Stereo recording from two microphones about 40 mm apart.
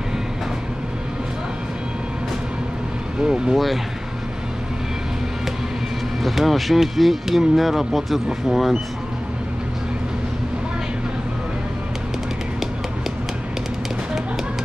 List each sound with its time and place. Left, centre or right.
3.2 s speech: right
3.5 s speech: centre
6.2 s speech: centre